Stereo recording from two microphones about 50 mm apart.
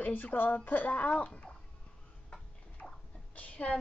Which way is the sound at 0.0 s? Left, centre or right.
Left.